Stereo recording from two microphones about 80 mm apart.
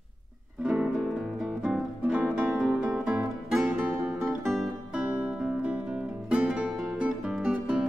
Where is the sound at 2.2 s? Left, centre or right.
Centre.